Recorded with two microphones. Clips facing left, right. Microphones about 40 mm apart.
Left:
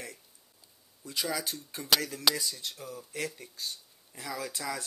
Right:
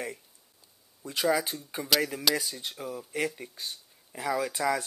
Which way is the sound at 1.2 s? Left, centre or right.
Centre.